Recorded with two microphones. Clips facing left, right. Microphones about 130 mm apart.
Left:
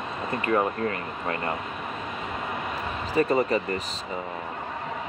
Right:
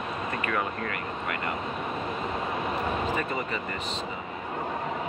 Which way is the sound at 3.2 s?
35° left (ahead or behind).